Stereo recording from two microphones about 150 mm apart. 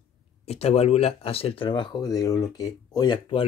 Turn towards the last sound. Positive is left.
turn(degrees=35)  # may be behind; listen again after turning